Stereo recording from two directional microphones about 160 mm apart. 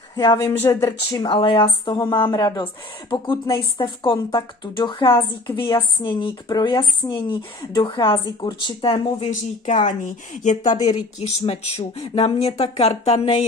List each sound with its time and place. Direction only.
0.1 s speech: 20° left (ahead or behind)
9.2 s speech: 45° left (ahead or behind)
11.2 s speech: 40° left (ahead or behind)